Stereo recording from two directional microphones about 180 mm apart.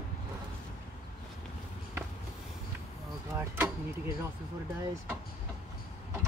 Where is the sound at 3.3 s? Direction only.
15° right (ahead or behind).